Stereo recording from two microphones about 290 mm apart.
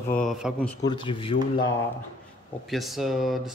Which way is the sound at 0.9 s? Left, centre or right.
Centre.